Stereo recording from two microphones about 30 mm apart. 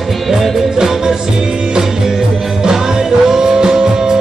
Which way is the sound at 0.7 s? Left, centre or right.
Centre.